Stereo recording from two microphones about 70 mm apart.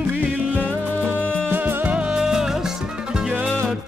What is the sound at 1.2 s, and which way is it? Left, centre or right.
Music, centre.